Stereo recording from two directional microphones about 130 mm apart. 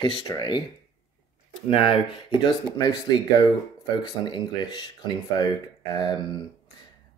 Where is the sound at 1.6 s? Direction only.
45° left (ahead or behind).